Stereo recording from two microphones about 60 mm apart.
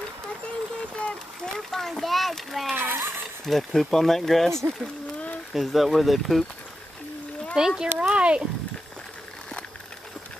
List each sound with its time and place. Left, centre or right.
0.9 s a sound: centre
1.6 s a child's voice: centre
2.7 s speech: right
3.4 s a child's voice: centre
7.5 s speech: centre